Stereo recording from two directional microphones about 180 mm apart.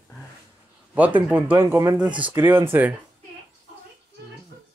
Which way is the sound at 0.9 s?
10° right (ahead or behind).